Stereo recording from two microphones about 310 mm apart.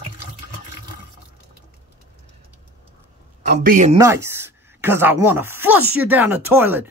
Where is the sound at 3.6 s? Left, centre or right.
Right.